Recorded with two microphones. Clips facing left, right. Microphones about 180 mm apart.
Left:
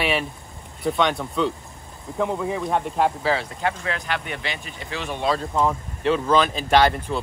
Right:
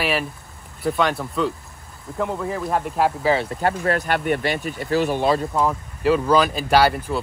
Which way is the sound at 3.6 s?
45° right (ahead or behind).